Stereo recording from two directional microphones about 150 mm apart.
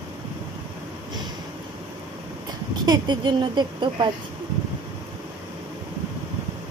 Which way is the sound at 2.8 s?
30° right (ahead or behind).